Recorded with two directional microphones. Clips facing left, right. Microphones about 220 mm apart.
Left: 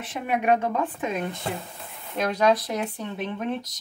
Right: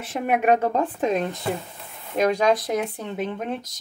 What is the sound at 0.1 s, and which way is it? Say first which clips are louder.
Speech: right 3 dB; 45° right (ahead or behind).